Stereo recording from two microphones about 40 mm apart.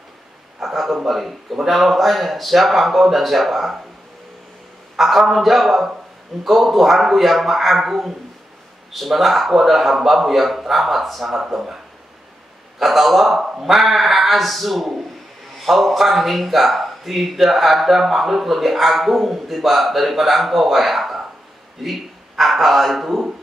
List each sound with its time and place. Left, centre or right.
0.6 s speech: centre
4.9 s a man's voice: centre
11.4 s speech: centre
12.7 s speech: centre
22.4 s speech: centre